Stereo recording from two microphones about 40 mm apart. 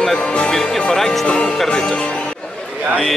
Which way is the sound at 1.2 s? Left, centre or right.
Left.